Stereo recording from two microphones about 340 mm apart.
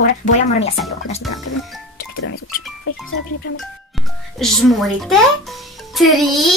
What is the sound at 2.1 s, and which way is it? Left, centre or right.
Music, left.